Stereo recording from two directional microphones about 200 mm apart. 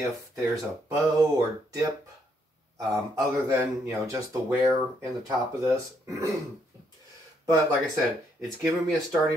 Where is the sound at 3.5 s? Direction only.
15° right (ahead or behind).